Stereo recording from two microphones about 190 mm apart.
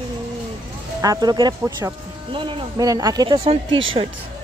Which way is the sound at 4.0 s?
40° right (ahead or behind).